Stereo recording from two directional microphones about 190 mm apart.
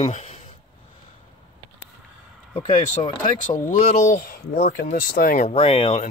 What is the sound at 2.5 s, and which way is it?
Speech, 25° left (ahead or behind).